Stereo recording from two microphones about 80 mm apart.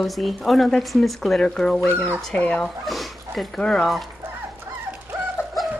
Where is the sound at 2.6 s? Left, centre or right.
Centre.